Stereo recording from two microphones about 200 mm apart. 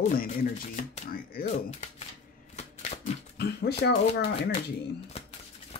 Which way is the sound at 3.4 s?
55° left (ahead or behind).